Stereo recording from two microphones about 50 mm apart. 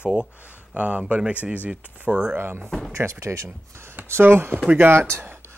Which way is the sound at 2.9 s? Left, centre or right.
Right.